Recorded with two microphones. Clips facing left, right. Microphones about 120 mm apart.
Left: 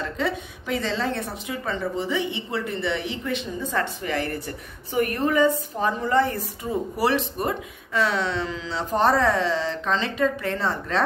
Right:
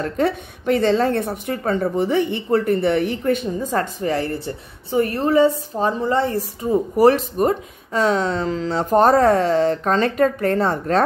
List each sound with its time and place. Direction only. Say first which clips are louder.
0.0 s speech: right 6 dB; 50° right (ahead or behind)